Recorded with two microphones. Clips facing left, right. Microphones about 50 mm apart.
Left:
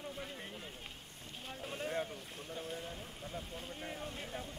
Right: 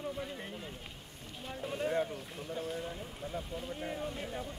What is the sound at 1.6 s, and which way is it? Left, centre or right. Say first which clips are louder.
Boat: right 6 dB; centre.